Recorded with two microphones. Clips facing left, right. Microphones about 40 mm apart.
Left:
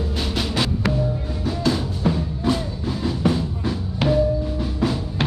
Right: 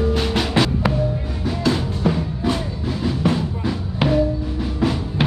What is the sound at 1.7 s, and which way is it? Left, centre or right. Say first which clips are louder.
Music: right 2 dB; right.